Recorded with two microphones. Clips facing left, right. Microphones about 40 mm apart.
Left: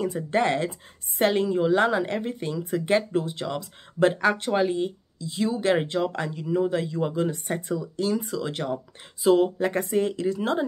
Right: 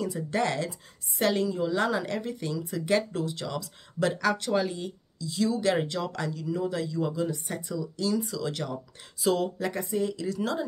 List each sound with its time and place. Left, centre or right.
0.0 s speech: left
1.9 s speech: left
9.8 s speech: left